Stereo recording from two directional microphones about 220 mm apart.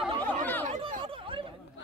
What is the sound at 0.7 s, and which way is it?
Chatter, 25° right (ahead or behind).